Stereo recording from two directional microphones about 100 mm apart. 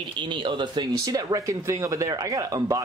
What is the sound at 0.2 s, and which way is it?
Speech, 55° right (ahead or behind).